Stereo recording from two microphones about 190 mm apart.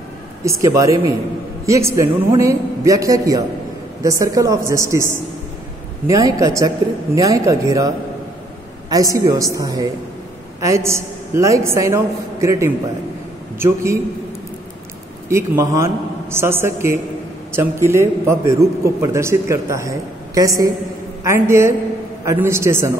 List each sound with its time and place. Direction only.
0.4 s a man's voice: 15° right (ahead or behind)
15.2 s a man's voice: 15° right (ahead or behind)